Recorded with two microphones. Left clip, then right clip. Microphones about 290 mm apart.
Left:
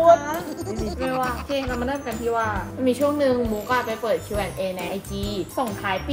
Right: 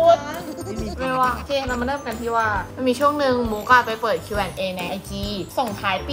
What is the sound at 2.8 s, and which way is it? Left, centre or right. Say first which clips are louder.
Speech: right 2 dB; centre.